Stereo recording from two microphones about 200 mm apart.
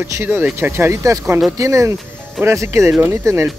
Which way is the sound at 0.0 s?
10° right (ahead or behind).